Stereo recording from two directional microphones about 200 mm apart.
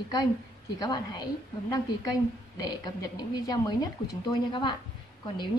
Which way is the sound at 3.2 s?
20° left (ahead or behind).